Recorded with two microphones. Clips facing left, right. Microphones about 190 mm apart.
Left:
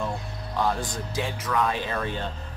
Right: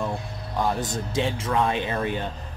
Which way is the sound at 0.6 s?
20° right (ahead or behind).